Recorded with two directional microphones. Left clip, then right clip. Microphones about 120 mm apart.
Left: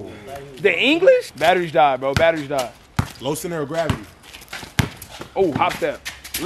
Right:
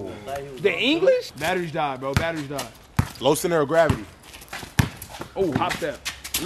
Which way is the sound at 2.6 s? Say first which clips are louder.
Left 6 dB; 10° left (ahead or behind).